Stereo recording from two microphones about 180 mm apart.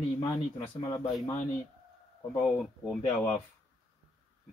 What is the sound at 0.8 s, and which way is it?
Speech, 20° left (ahead or behind).